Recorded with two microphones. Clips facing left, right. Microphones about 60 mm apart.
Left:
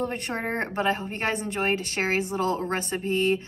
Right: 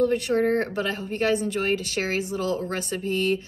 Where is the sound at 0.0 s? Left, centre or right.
Left.